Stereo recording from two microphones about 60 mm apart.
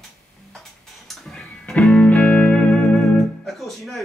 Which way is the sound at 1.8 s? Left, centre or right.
Centre.